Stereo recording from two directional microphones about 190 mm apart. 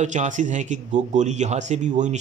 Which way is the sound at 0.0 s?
40° right (ahead or behind).